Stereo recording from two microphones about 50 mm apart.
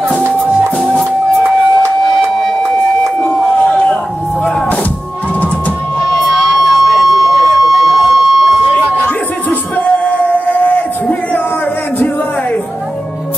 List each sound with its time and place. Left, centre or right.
3.7 s music: centre
6.3 s a sound: centre
9.0 s music: left